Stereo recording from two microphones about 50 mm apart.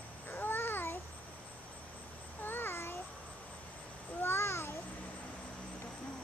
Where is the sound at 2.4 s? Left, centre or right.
Left.